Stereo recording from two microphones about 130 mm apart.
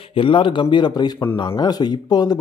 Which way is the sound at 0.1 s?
40° left (ahead or behind).